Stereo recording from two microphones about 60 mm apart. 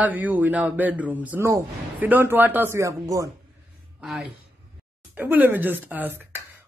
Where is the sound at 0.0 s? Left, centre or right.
Right.